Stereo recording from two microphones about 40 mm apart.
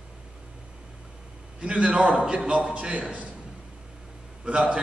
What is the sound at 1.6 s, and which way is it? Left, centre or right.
A man's voice, right.